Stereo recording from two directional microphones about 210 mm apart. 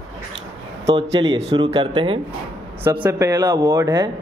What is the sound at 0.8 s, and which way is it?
A man's voice, 25° right (ahead or behind).